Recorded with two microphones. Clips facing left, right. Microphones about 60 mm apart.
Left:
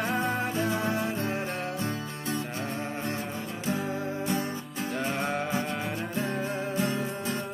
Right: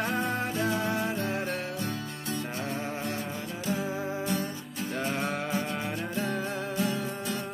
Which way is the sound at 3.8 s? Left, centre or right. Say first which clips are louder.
Even; centre.